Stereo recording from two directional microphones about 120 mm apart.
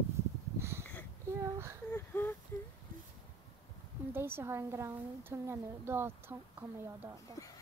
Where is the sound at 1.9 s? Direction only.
20° left (ahead or behind).